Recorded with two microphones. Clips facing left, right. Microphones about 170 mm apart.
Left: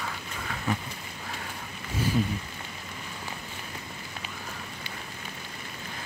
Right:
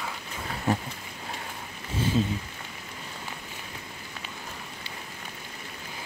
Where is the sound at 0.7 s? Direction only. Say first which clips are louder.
Right 4 dB; 40° right (ahead or behind).